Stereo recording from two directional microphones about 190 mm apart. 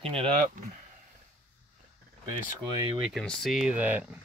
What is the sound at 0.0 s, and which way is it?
Speech, 30° right (ahead or behind).